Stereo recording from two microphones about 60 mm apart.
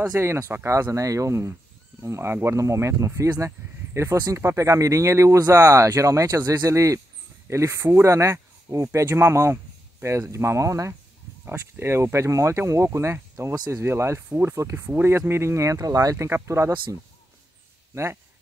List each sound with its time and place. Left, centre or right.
0.2 s speech: right
0.7 s speech: right
5.9 s speech: right
11.7 s speech: right
16.4 s speech: right